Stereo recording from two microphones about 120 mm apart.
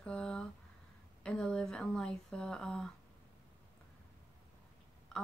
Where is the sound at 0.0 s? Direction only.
10° left (ahead or behind).